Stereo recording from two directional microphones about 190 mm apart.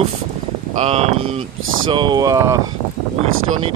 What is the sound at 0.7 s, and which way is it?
Speech, 35° right (ahead or behind).